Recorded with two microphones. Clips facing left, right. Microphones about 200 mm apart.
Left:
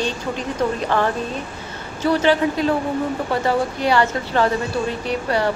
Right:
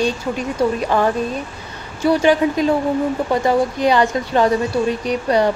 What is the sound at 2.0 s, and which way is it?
Speech, 10° right (ahead or behind).